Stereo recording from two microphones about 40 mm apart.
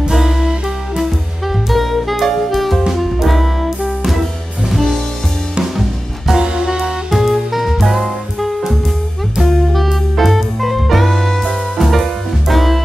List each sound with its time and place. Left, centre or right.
0.1 s music: centre
1.7 s saxophone: centre
2.9 s music: centre
4.6 s music: centre
6.4 s music: centre
7.1 s music: centre